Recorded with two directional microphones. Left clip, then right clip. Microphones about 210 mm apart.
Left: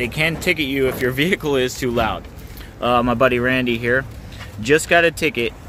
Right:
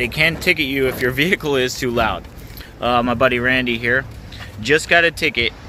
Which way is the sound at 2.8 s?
25° left (ahead or behind).